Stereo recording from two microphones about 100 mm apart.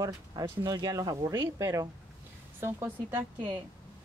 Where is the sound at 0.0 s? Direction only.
40° right (ahead or behind); by 3.3 s 25° right (ahead or behind).